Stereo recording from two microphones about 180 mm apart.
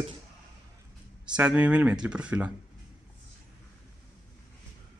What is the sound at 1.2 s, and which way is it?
Speech, 5° right (ahead or behind).